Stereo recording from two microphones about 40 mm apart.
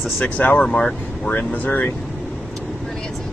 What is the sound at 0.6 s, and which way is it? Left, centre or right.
Speech, centre.